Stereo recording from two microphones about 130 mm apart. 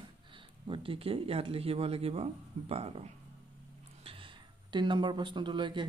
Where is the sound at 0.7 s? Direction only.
45° right (ahead or behind).